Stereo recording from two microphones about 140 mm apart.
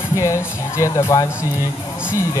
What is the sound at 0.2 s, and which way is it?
Speech, 20° left (ahead or behind).